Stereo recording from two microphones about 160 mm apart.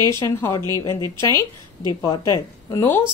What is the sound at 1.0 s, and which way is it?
Speech, 25° right (ahead or behind).